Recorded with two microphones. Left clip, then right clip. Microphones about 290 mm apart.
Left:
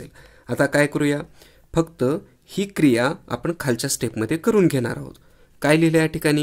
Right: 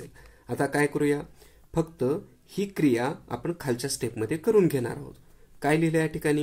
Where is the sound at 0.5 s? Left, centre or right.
Left.